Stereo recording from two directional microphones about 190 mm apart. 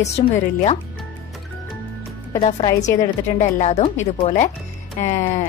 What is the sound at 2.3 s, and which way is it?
A woman's voice, 35° left (ahead or behind).